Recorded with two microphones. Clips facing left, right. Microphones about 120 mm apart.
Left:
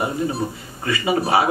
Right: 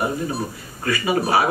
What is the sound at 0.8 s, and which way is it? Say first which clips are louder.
Speech: even; 25° left (ahead or behind).